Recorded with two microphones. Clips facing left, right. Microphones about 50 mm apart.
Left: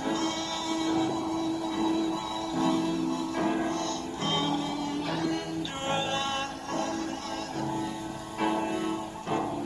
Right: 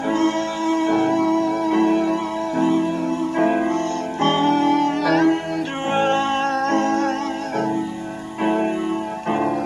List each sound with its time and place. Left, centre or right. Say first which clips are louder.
0.1 s music: right 13 dB; right
2.6 s music: right 7 dB; right
4.6 s music: right 13 dB; right
5.9 s music: right 14 dB; right
6.8 s music: right 12 dB; right